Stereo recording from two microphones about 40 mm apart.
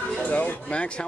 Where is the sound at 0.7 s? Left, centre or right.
Left.